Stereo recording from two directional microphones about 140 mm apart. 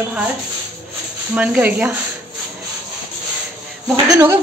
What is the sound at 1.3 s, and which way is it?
Speech, 10° right (ahead or behind).